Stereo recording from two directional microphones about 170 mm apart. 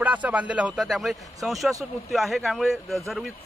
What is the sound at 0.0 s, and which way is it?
Speech, 10° right (ahead or behind).